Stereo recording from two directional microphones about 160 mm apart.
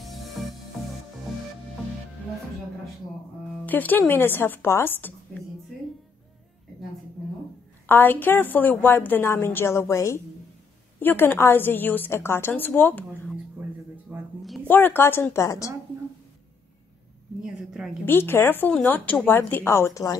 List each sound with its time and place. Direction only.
0.4 s music: centre (ahead or behind)
3.6 s a woman's voice: 10° left (ahead or behind)
7.8 s a woman's voice: 15° left (ahead or behind)
13.6 s a sound: 10° right (ahead or behind)
14.7 s a woman's voice: 10° left (ahead or behind)
17.4 s a sound: 5° right (ahead or behind)
18.0 s a woman's voice: 15° left (ahead or behind)